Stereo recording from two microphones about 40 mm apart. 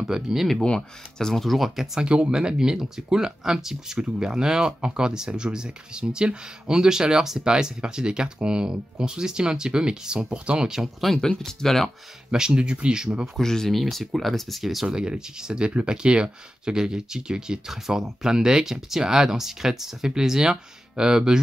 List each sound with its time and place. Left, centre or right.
0.1 s speech: centre
0.6 s speech: centre
1.4 s speech: centre
2.0 s speech: right
11.1 s speech: centre
12.3 s speech: centre
13.4 s speech: centre
13.7 s speech: centre
14.9 s speech: centre